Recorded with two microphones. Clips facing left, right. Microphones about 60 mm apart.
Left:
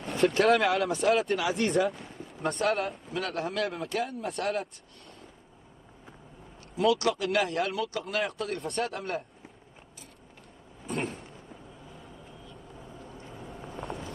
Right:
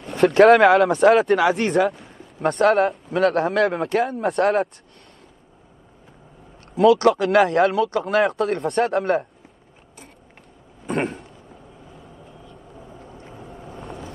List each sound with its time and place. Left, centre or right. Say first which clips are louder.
0.3 s speech: right 14 dB; right
6.7 s speech: right 10 dB; right
10.9 s a sound: right 9 dB; right
12.7 s vehicle: right 4 dB; centre